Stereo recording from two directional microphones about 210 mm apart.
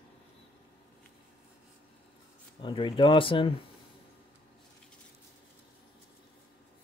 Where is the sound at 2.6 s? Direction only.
25° left (ahead or behind).